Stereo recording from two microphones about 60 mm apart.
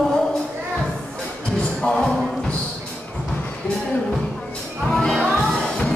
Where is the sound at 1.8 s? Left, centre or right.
Centre.